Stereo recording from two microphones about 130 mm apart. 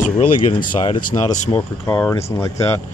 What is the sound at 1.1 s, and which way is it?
Speech, 35° left (ahead or behind).